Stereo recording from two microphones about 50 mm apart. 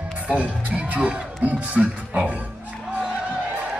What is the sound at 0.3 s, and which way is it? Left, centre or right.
Music, right.